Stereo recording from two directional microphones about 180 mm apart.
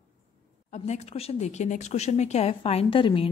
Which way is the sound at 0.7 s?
40° left (ahead or behind).